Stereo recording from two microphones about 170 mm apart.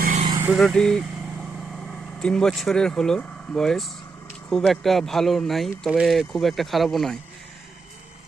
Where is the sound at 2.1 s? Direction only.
5° left (ahead or behind).